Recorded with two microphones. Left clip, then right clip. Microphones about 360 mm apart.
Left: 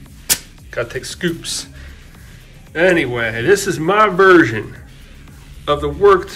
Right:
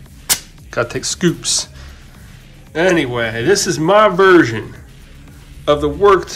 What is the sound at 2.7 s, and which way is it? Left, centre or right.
A man's voice, centre.